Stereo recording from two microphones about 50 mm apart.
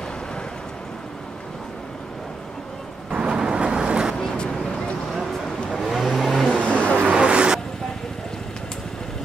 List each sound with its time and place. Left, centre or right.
3.2 s vehicle: centre
4.2 s vehicle: centre
5.8 s vehicle: centre
6.6 s vehicle: right
7.0 s a sound: right